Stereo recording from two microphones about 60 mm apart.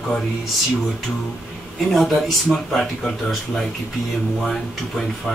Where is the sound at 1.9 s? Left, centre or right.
Centre.